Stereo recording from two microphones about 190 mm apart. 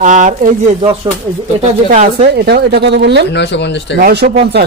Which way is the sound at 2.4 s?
60° right (ahead or behind).